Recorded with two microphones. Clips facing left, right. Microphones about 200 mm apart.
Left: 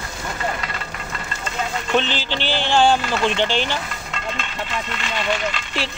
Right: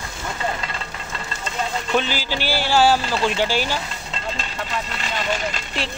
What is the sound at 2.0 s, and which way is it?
Speech, 10° right (ahead or behind).